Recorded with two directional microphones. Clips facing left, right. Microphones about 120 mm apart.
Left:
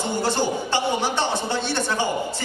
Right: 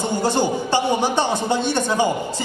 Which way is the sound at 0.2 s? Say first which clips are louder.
Right 3 dB; 15° right (ahead or behind).